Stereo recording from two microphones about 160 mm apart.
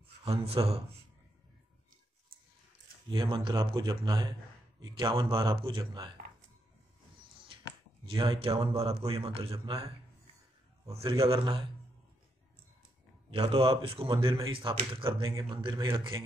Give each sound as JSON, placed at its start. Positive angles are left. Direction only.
{"t": 0.2, "sound": "speech", "side_deg": -40}
{"t": 3.1, "sound": "speech", "side_deg": -30}
{"t": 8.1, "sound": "speech", "side_deg": -35}
{"t": 11.0, "sound": "speech", "side_deg": -35}
{"t": 13.3, "sound": "speech", "side_deg": -35}
{"t": 15.2, "sound": "speech", "side_deg": -20}
{"t": 15.5, "sound": "speech", "side_deg": -30}